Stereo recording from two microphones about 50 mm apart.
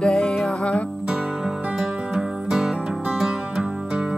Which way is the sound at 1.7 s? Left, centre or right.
Centre.